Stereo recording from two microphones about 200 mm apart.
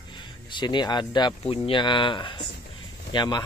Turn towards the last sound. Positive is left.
turn(degrees=20)  # may be behind; listen again after turning